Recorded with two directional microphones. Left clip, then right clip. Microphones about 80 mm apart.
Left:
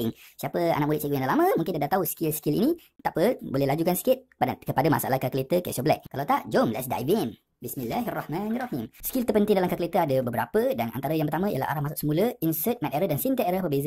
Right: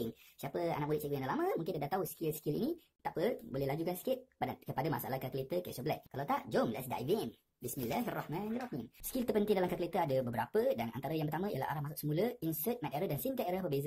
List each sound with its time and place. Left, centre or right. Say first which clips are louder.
0.4 s speech: left 12 dB; left
6.1 s speech: left 10 dB; left
7.9 s speech: left 9 dB; centre
8.5 s speech: left 11 dB; left
9.2 s speech: left 10 dB; left